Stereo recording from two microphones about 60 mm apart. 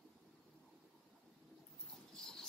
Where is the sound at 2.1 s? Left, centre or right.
Centre.